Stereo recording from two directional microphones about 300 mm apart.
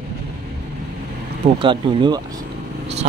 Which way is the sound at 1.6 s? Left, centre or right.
Centre.